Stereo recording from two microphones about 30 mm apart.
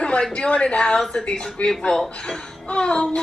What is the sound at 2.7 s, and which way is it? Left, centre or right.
Child singing, left.